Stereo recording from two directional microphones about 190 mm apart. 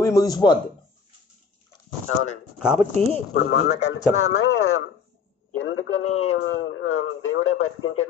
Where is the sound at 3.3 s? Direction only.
55° left (ahead or behind).